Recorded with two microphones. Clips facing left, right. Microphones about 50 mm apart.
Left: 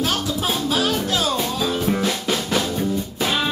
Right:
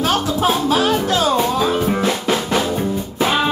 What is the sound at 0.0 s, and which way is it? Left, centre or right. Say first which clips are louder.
Music: right 6 dB; right.